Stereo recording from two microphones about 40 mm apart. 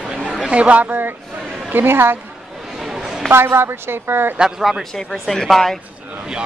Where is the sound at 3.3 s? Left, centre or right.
Right.